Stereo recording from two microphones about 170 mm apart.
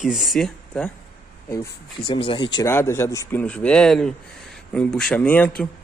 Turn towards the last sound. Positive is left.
turn(degrees=10)  # may be behind; listen again after turning